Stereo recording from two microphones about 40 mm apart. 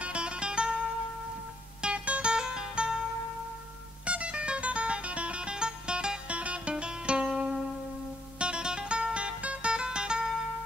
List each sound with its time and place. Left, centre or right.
0.0 s music: right
1.8 s music: right
4.0 s music: right